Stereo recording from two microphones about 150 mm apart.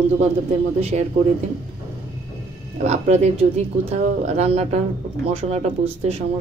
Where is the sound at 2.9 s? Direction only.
45° right (ahead or behind).